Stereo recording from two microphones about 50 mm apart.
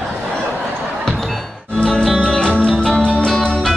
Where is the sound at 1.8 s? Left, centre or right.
Centre.